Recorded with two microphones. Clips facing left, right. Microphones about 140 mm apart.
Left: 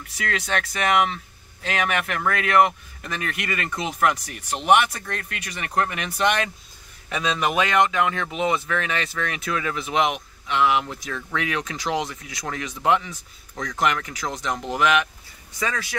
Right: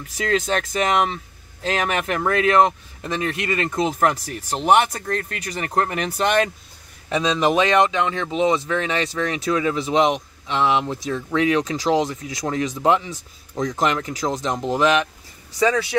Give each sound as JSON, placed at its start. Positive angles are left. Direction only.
{"t": 0.2, "sound": "speech", "side_deg": -30}